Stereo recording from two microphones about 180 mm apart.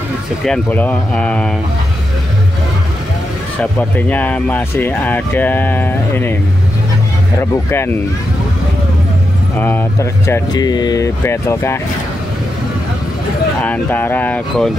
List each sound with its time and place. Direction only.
0.5 s speech: 10° left (ahead or behind)
3.9 s speech: 10° left (ahead or behind)
7.7 s speech: 15° left (ahead or behind)
9.6 s speech: 10° left (ahead or behind)
13.6 s speech: 10° left (ahead or behind)